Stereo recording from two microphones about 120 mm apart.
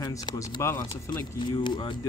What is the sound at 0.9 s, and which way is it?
Speech, 40° left (ahead or behind).